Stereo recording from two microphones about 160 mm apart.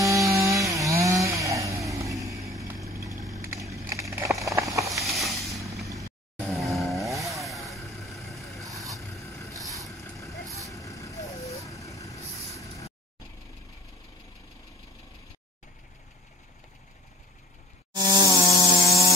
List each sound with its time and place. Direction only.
0.0 s music: 20° right (ahead or behind)
3.0 s vehicle: 20° right (ahead or behind)
4.1 s a sound: 20° right (ahead or behind)
4.9 s a sound: centre (ahead or behind)
6.5 s chainsaw: centre (ahead or behind)
7.3 s vehicle: centre (ahead or behind)
9.2 s vehicle: 20° left (ahead or behind)
9.8 s vehicle: centre (ahead or behind)
10.6 s vehicle: 20° left (ahead or behind)
17.9 s a sound: 25° right (ahead or behind)